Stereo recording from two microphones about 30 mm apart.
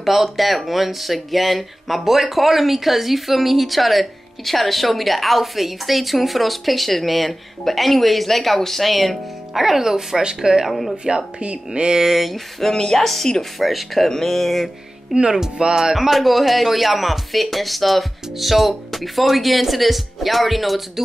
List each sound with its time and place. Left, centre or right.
0.0 s speech: centre; by 10.6 s right
10.6 s speech: centre
11.3 s speech: right
12.1 s speech: centre
12.7 s speech: centre
13.1 s a sound: centre
13.6 s speech: centre
14.0 s a sound: centre
15.1 s speech: centre
16.0 s speech: centre